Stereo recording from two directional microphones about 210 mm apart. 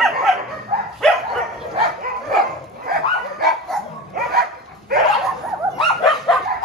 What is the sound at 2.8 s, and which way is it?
Dog, 45° right (ahead or behind).